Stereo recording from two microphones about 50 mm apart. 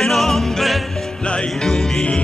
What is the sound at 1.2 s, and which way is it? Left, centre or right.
Music, left.